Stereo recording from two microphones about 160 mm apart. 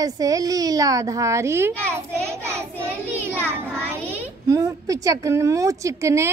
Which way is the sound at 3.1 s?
15° right (ahead or behind).